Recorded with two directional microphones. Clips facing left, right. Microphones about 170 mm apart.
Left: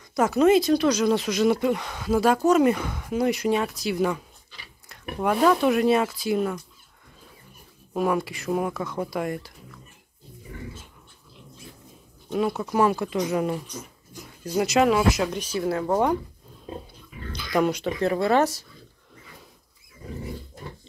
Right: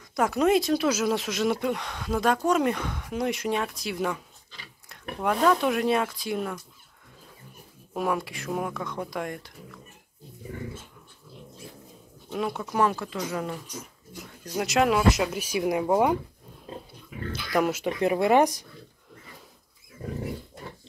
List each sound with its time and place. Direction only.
0.1 s speech: centre (ahead or behind)
7.9 s speech: centre (ahead or behind)
12.3 s speech: centre (ahead or behind)
12.9 s speech: 15° left (ahead or behind)
14.4 s speech: 5° left (ahead or behind)
17.3 s speech: 5° right (ahead or behind)